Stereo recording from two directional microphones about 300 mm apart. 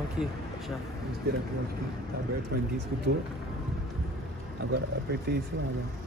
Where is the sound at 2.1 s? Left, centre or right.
Right.